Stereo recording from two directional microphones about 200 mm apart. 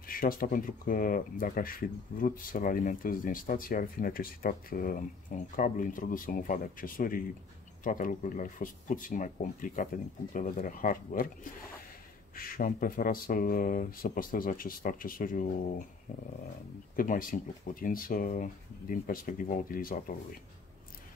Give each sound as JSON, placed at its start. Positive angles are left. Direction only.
{"t": 0.0, "sound": "speech", "side_deg": 45}
{"t": 12.4, "sound": "speech", "side_deg": 45}
{"t": 16.9, "sound": "speech", "side_deg": 45}